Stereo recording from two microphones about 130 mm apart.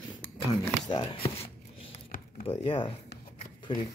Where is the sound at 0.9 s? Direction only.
50° left (ahead or behind).